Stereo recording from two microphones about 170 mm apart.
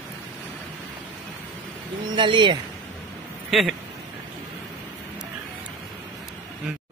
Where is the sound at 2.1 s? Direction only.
30° right (ahead or behind).